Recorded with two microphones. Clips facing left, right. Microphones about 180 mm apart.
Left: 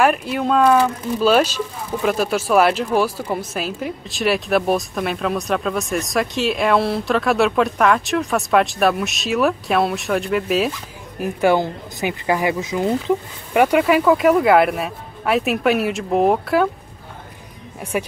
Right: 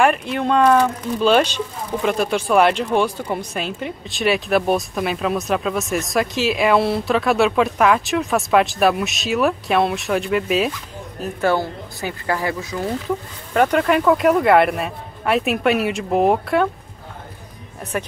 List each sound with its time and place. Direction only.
0.0 s speech: 5° left (ahead or behind)
11.1 s speech: 15° left (ahead or behind); by 16.6 s centre (ahead or behind)